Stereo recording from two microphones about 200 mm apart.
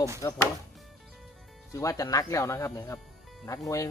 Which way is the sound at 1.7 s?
15° left (ahead or behind).